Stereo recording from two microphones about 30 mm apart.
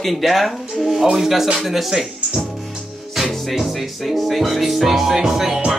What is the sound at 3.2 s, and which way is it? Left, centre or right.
Music, centre.